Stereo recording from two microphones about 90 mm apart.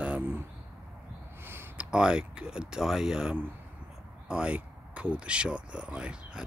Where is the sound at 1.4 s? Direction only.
25° right (ahead or behind).